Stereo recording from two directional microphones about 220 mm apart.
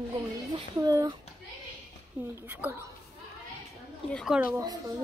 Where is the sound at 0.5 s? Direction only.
15° right (ahead or behind).